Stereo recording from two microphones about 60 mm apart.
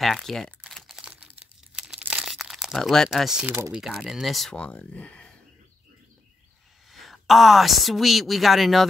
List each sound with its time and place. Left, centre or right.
0.0 s speech: centre
1.8 s crumpling: centre
2.2 s crumpling: centre
2.8 s speech: centre
3.1 s speech: centre
4.7 s speech: left
6.9 s a woman's voice: centre